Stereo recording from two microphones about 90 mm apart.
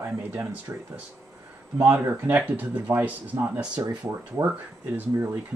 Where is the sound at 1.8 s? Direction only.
25° right (ahead or behind).